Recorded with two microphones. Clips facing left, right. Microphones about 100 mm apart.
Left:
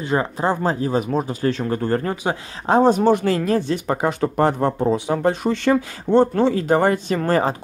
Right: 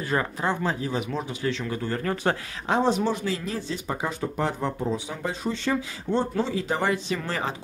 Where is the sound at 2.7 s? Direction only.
45° left (ahead or behind).